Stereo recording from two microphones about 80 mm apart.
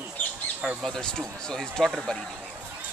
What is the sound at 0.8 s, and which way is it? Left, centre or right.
A man's voice, centre.